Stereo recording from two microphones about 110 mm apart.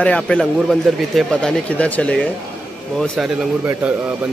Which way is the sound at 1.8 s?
10° left (ahead or behind).